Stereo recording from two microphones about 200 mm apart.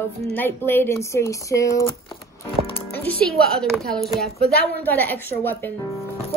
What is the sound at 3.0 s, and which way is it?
A woman's voice, 5° left (ahead or behind).